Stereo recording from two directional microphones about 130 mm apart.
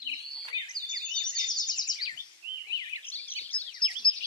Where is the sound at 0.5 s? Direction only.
30° right (ahead or behind).